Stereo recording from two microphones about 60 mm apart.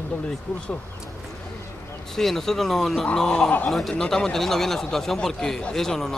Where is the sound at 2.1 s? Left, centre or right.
Centre.